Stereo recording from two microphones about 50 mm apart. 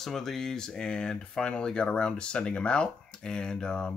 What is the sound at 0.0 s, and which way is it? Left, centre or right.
Speech, centre.